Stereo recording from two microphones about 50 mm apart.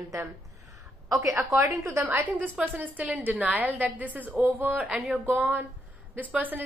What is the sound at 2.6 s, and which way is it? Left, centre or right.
Speech, centre.